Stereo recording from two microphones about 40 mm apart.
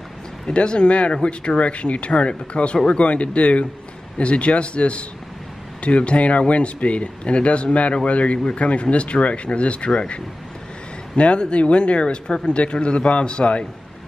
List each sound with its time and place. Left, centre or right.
0.5 s speech: left